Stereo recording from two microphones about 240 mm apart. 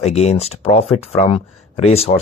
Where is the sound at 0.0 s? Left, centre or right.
Left.